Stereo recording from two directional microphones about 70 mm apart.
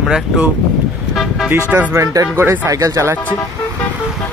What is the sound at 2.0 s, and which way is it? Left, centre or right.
Speech, right.